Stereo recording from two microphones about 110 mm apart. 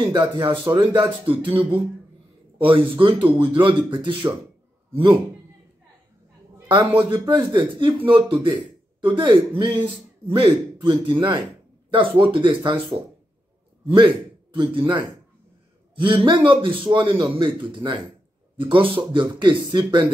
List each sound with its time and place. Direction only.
0.4 s speech: 45° right (ahead or behind)
1.5 s speech: 15° right (ahead or behind)
2.6 s speech: 50° right (ahead or behind)
7.1 s speech: 45° right (ahead or behind)
13.8 s a man's voice: 50° right (ahead or behind)